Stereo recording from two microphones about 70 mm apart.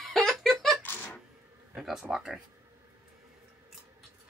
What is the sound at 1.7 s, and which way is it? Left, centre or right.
Speech, centre.